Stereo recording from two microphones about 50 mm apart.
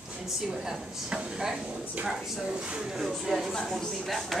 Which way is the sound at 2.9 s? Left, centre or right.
Centre.